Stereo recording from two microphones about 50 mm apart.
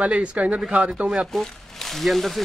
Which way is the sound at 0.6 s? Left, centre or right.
Centre.